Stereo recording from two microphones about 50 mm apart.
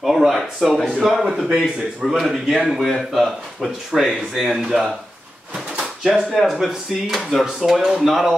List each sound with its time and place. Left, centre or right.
0.0 s speech: centre
0.7 s a man's voice: centre
1.0 s a man's voice: centre
5.8 s a sound: centre
6.3 s a man's voice: centre